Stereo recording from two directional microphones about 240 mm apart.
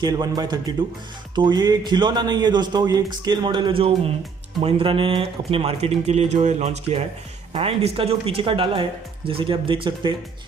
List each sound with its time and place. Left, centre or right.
0.0 s a man's voice: centre